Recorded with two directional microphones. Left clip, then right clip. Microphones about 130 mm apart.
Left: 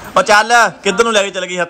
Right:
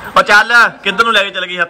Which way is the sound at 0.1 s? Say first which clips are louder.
Right 2 dB; 20° left (ahead or behind).